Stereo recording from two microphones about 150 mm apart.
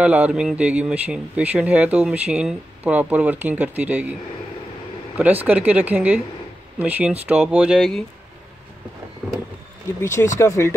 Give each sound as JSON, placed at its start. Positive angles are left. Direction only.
{"t": 0.0, "sound": "speech", "side_deg": -10}
{"t": 10.0, "sound": "speech", "side_deg": 20}